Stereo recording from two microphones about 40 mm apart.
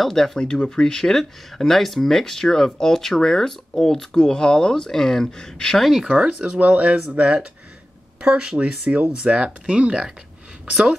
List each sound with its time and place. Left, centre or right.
0.0 s speech: centre
0.6 s speech: centre
6.0 s a woman's voice: right